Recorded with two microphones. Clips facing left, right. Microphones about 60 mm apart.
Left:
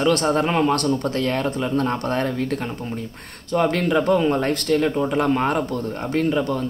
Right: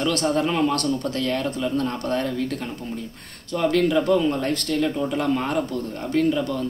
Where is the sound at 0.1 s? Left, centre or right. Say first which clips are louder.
Left 3 dB; left.